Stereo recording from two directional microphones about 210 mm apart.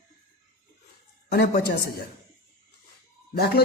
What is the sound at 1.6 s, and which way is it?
Speech, 50° left (ahead or behind).